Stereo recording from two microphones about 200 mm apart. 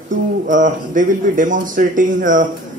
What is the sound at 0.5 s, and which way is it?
Speech, 40° right (ahead or behind).